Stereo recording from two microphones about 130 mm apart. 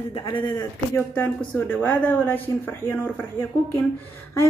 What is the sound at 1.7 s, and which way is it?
A woman's voice, 15° left (ahead or behind).